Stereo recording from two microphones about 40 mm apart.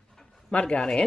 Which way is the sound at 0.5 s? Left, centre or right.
Left.